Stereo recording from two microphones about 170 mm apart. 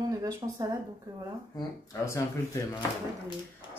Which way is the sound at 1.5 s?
20° left (ahead or behind).